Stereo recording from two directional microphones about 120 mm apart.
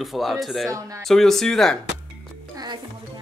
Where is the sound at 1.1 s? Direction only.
5° left (ahead or behind).